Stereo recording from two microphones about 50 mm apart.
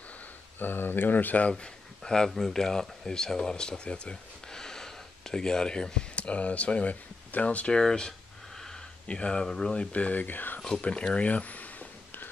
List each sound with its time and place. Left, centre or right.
0.6 s speech: left
1.5 s speech: centre
9.9 s speech: left
10.8 s speech: left